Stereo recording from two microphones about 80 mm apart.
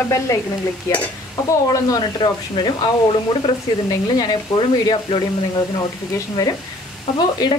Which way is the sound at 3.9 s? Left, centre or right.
Left.